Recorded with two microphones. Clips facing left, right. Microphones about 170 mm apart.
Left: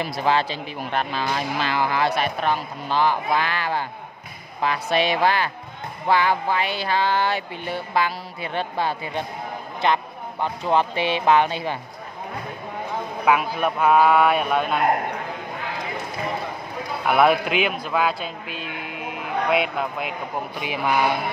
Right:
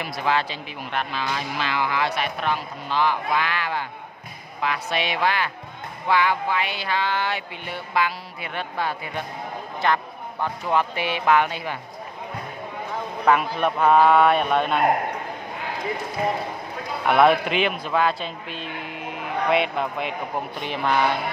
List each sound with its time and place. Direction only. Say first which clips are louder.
0.2 s speech: left 2 dB; 30° left (ahead or behind)
13.2 s a man's voice: even; 5° left (ahead or behind)
17.0 s a man's voice: right 1 dB; 5° left (ahead or behind)